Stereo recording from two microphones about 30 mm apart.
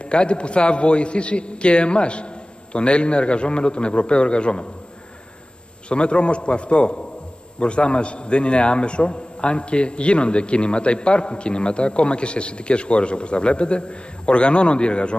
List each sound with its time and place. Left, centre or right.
0.0 s a man's voice: left
5.9 s a man's voice: left